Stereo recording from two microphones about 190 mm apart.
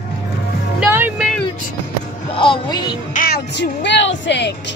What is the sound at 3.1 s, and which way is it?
Music, 45° left (ahead or behind).